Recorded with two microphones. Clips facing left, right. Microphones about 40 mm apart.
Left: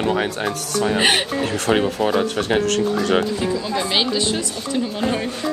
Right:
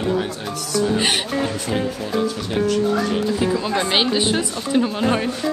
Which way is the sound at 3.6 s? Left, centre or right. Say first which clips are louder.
Right 1 dB; right.